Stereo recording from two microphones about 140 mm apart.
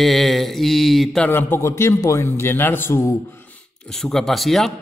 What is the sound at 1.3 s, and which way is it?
A man's voice, 15° left (ahead or behind).